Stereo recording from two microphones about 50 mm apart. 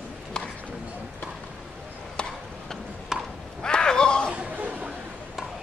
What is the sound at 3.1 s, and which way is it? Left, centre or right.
Chop, centre.